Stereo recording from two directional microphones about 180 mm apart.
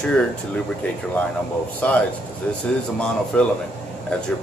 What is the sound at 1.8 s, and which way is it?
A man's voice, 10° left (ahead or behind).